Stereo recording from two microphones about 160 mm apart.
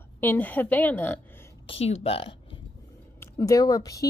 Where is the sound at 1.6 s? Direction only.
40° left (ahead or behind).